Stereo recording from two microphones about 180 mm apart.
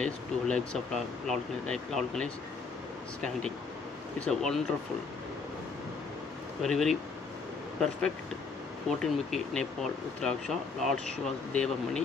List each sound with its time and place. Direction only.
0.0 s speech: 5° left (ahead or behind)
4.2 s speech: centre (ahead or behind)
6.6 s speech: centre (ahead or behind)
8.8 s speech: 5° left (ahead or behind)